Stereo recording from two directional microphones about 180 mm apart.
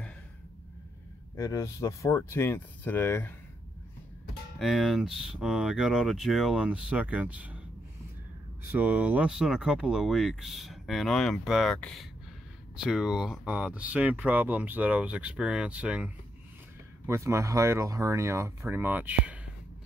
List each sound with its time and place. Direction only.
1.3 s speech: 15° left (ahead or behind)
4.6 s speech: centre (ahead or behind)
8.7 s speech: 10° right (ahead or behind)